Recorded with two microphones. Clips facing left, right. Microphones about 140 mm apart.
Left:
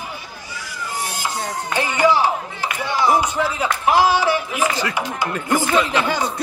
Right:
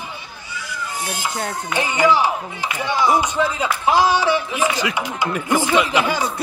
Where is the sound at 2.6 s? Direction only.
20° right (ahead or behind).